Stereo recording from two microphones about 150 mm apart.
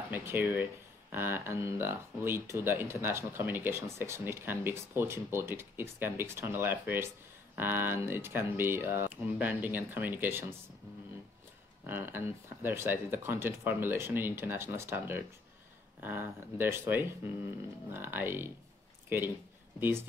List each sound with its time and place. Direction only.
0.1 s speech: 15° right (ahead or behind)
11.8 s speech: 15° right (ahead or behind)